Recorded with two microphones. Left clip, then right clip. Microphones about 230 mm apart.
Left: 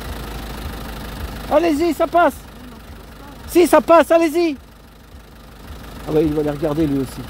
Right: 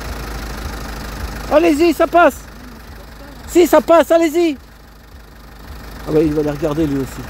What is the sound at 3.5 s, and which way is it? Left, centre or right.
Speech, centre.